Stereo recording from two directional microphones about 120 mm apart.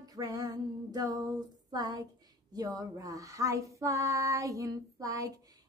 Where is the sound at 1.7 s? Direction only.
30° right (ahead or behind).